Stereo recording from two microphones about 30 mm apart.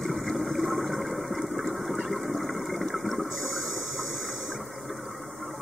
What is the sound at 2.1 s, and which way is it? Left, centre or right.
Water, centre.